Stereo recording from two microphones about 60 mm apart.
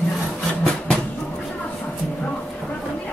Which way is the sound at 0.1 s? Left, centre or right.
Centre.